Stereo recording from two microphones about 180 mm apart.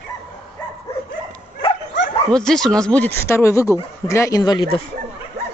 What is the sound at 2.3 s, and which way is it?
Speech, 5° left (ahead or behind).